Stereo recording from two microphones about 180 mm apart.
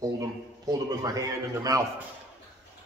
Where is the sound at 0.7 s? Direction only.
20° right (ahead or behind).